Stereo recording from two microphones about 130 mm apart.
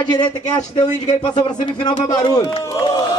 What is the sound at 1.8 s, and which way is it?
A man's voice, 35° left (ahead or behind).